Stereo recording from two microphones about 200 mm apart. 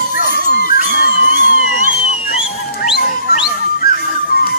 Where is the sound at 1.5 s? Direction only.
40° left (ahead or behind).